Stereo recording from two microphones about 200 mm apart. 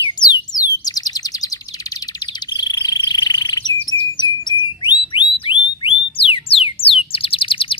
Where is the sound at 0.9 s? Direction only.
20° left (ahead or behind).